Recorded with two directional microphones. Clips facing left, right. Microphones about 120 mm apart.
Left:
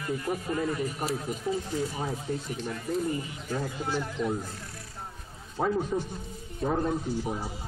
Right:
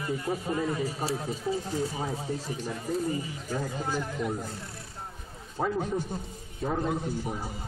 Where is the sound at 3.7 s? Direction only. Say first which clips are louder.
Even; 40° right (ahead or behind).